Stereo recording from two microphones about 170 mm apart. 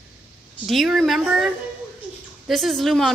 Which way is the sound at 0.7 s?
Centre (ahead or behind).